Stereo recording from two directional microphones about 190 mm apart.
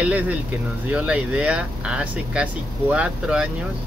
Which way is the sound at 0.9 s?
5° right (ahead or behind).